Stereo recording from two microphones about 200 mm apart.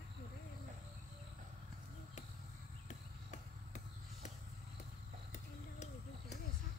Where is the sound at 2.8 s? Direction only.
35° left (ahead or behind).